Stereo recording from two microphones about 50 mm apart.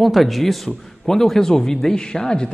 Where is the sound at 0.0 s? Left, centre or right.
Centre.